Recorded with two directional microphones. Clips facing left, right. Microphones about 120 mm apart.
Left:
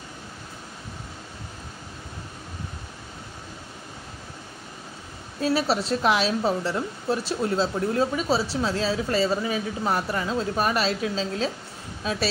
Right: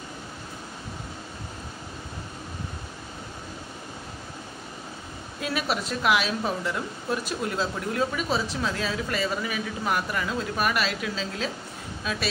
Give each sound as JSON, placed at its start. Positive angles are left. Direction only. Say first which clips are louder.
{"t": 5.4, "sound": "speech", "louder": "left 5 dB", "side_deg": 30}